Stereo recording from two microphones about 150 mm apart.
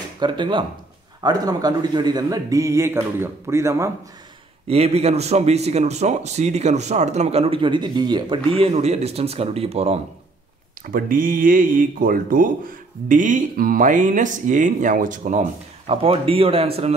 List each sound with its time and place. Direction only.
0.2 s a man's voice: 30° right (ahead or behind)
4.6 s a man's voice: 45° right (ahead or behind)
8.7 s a man's voice: 45° right (ahead or behind)
10.9 s speech: 70° right (ahead or behind)
15.9 s speech: 40° right (ahead or behind)